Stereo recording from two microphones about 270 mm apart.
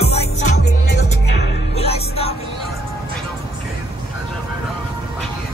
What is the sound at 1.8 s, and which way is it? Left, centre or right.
Music, left.